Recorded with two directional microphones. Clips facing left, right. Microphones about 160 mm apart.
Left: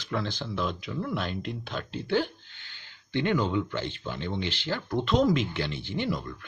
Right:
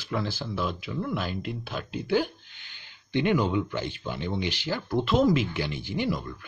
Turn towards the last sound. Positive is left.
turn(degrees=-5)  # may be behind; listen again after turning